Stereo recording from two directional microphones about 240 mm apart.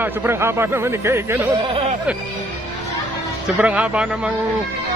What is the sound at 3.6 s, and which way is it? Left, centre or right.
Speech, centre.